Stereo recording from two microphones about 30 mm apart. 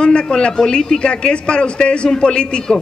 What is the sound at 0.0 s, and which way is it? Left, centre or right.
A man's voice, left.